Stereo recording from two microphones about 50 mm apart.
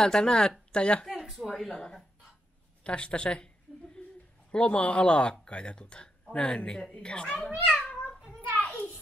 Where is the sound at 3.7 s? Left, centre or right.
Centre.